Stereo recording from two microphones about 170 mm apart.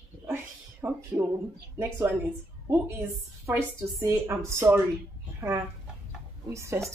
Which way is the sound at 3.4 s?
15° right (ahead or behind).